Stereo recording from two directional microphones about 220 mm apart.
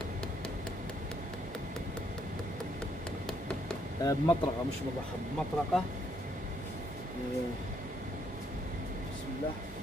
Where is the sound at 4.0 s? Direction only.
15° left (ahead or behind).